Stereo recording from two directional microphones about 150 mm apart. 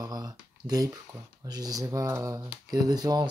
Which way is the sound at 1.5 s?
25° right (ahead or behind).